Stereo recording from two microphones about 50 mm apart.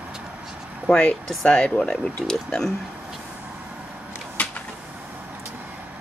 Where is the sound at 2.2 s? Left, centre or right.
Centre.